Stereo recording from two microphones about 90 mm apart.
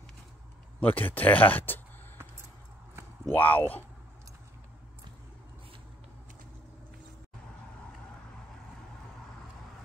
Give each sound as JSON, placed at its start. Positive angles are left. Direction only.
{"t": 0.7, "sound": "speech", "side_deg": 20}
{"t": 3.3, "sound": "speech", "side_deg": 20}